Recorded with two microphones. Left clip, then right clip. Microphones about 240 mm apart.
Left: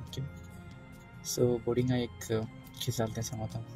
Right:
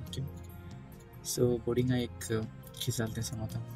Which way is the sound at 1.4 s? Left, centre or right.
Centre.